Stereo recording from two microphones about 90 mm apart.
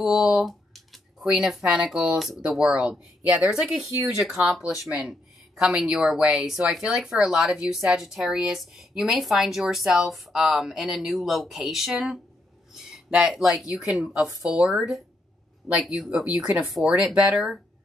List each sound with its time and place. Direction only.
0.0 s speech: 5° right (ahead or behind)